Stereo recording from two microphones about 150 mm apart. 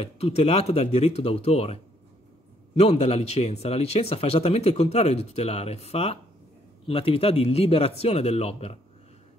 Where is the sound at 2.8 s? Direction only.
45° left (ahead or behind).